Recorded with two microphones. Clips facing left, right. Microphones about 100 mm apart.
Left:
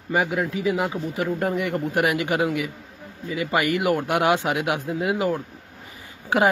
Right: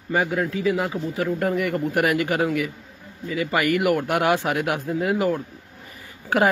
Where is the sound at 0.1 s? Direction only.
15° left (ahead or behind).